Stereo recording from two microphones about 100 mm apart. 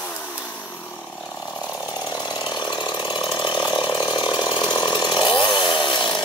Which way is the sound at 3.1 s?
50° left (ahead or behind).